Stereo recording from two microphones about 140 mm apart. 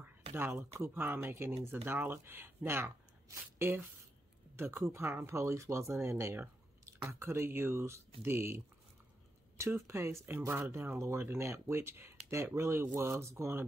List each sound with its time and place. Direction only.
0.7 s speech: 15° right (ahead or behind)
9.6 s speech: 20° right (ahead or behind)